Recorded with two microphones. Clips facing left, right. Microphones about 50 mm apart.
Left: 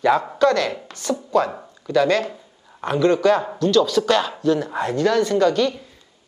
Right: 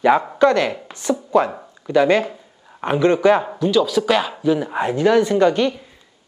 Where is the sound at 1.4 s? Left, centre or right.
Right.